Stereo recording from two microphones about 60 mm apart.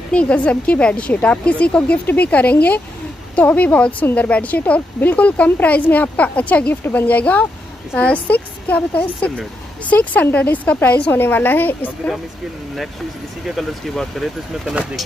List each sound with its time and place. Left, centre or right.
0.1 s a woman's voice: centre
11.1 s a woman's voice: left
13.6 s speech: centre